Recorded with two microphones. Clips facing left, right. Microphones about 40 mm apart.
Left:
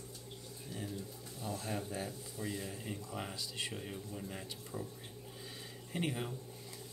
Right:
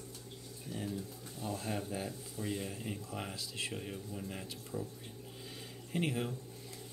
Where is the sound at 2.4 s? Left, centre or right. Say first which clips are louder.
Right 2 dB; left.